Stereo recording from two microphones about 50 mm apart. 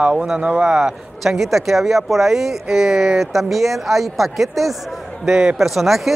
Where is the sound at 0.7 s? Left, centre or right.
Centre.